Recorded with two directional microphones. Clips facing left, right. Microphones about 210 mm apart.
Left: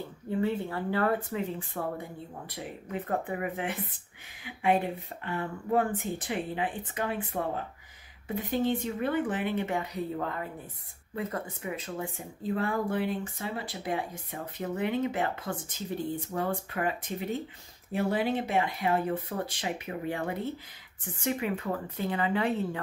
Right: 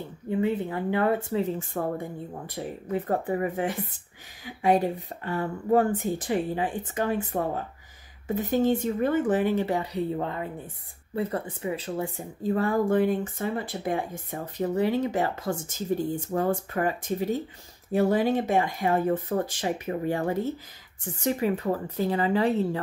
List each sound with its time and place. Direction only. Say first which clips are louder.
0.4 s speech: right 3 dB; 15° right (ahead or behind)
1.8 s speech: right 3 dB; 40° right (ahead or behind)